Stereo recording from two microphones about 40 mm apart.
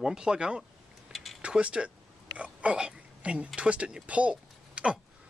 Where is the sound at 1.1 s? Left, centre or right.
Centre.